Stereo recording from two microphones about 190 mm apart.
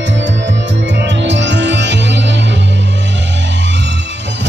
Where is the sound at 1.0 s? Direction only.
70° right (ahead or behind).